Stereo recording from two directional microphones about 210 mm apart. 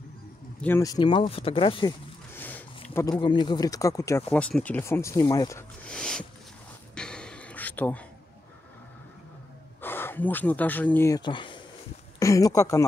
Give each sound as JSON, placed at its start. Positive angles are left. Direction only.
{"t": 0.6, "sound": "speech", "side_deg": 10}
{"t": 2.3, "sound": "a sound", "side_deg": 10}
{"t": 3.2, "sound": "speech", "side_deg": 20}
{"t": 5.9, "sound": "speech", "side_deg": 5}
{"t": 7.0, "sound": "a sound", "side_deg": 5}
{"t": 9.8, "sound": "speech", "side_deg": 10}